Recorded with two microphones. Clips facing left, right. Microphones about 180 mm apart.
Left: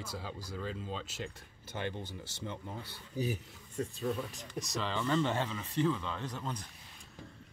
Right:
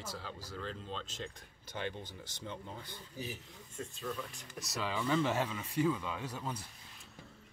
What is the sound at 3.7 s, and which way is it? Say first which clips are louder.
Speech: left 6 dB; 35° left (ahead or behind).